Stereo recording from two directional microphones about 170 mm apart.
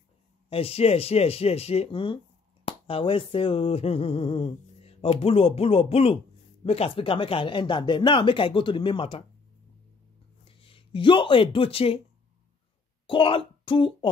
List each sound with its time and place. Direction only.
0.5 s finger snapping: 35° left (ahead or behind)
6.6 s speech: 35° left (ahead or behind)
10.4 s speech: 35° left (ahead or behind)
13.0 s speech: 30° left (ahead or behind)